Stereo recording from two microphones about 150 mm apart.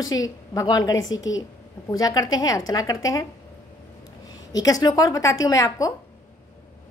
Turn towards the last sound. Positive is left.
turn(degrees=20)  # may be behind; listen again after turning